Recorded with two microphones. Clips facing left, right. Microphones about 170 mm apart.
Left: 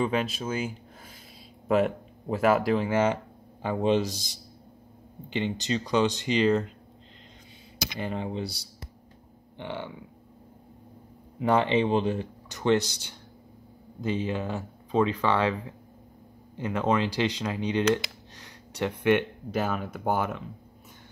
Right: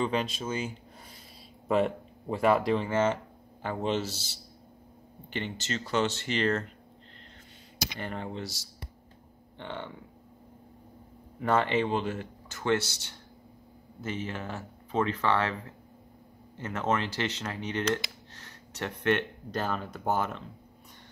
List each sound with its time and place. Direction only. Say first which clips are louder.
0.0 s speech: left 2 dB; 5° left (ahead or behind)
8.0 s speech: left 6 dB; 15° left (ahead or behind)
9.6 s speech: left 3 dB; 10° left (ahead or behind)
11.3 s speech: left 3 dB; 15° left (ahead or behind)